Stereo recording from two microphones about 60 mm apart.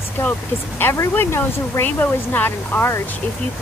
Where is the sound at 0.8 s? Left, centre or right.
Left.